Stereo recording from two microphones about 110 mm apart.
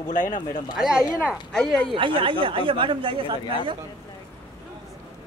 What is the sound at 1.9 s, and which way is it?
Speech, 55° right (ahead or behind).